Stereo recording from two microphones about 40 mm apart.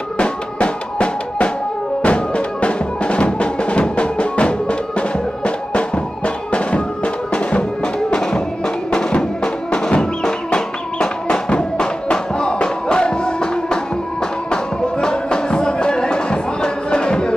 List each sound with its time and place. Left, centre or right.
0.2 s drum: left
2.0 s music: left